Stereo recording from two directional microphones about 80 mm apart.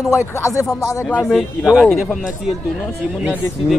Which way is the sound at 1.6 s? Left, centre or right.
Centre.